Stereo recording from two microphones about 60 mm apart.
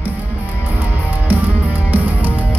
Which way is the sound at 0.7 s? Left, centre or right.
Right.